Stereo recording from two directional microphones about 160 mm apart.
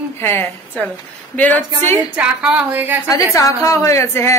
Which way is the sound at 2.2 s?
5° right (ahead or behind).